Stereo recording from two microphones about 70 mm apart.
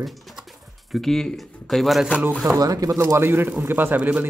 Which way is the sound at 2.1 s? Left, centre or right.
Centre.